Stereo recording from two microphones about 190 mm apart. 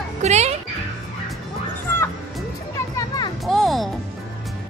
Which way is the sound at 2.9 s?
20° left (ahead or behind).